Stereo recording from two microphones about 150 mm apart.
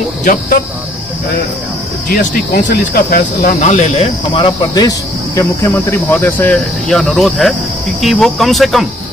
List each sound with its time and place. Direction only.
0.2 s speech: 65° left (ahead or behind)
2.0 s speech: 70° left (ahead or behind); by 8.8 s centre (ahead or behind)